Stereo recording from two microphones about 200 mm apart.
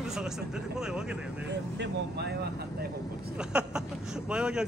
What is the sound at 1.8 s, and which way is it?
Speech, 55° right (ahead or behind).